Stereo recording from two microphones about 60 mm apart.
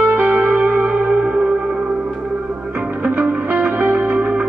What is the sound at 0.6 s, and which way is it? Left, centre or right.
Music, centre.